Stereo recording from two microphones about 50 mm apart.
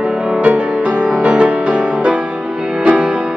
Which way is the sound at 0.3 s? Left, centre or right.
Right.